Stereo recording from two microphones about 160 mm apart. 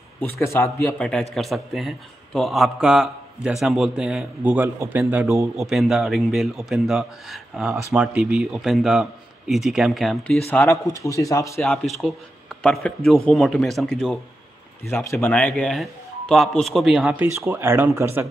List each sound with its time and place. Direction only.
0.4 s speech: 15° left (ahead or behind); by 5.5 s 15° right (ahead or behind)
5.6 s speech: centre (ahead or behind); by 11.6 s 20° left (ahead or behind)
11.6 s speech: centre (ahead or behind)
14.9 s speech: 15° left (ahead or behind); by 17.3 s 5° right (ahead or behind)
17.4 s speech: 15° right (ahead or behind)